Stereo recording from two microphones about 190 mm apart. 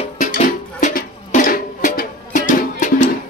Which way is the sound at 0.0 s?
40° left (ahead or behind).